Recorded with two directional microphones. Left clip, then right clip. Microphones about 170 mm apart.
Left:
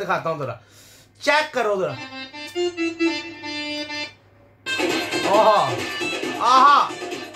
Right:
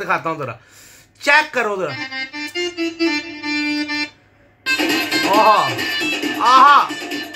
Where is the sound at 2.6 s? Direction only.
60° right (ahead or behind).